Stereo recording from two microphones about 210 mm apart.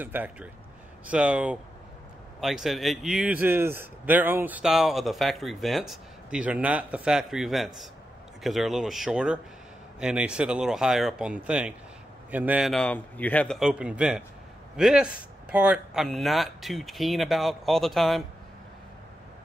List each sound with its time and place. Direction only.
0.0 s a man's voice: 10° right (ahead or behind)